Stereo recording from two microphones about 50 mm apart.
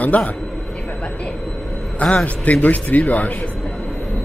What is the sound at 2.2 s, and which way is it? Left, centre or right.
Speech, left.